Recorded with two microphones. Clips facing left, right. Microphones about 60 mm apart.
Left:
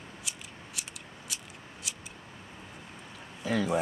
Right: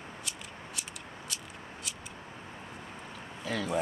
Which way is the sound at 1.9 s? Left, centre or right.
Centre.